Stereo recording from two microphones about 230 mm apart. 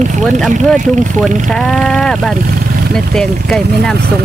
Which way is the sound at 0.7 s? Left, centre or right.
Right.